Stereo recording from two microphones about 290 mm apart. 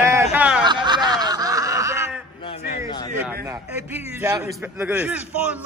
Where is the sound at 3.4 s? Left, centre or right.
Centre.